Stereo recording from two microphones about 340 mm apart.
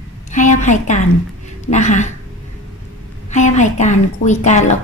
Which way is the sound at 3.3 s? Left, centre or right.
Left.